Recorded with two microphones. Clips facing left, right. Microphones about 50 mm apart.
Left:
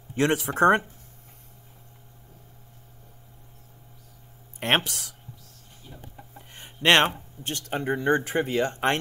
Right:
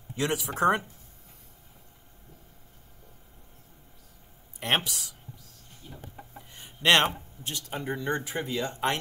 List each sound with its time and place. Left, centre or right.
0.1 s speech: left
4.6 s speech: left
6.5 s a sound: left
7.7 s speech: left